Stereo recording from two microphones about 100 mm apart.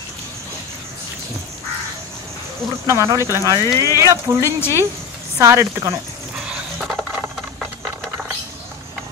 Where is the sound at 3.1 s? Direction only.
30° right (ahead or behind).